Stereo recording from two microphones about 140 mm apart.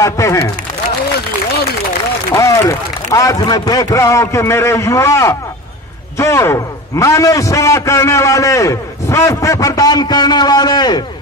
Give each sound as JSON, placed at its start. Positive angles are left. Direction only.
{"t": 0.0, "sound": "a man's voice", "side_deg": 20}
{"t": 2.3, "sound": "a man's voice", "side_deg": 20}